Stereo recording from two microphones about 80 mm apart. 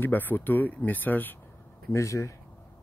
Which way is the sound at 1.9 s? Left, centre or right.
Left.